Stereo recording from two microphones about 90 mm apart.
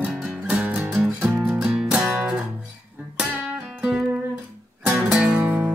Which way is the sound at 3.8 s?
10° right (ahead or behind).